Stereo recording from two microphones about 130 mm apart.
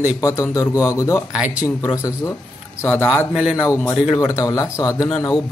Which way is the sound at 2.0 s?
20° left (ahead or behind).